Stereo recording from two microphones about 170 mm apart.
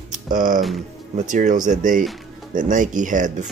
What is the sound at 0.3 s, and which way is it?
Speech, 50° right (ahead or behind).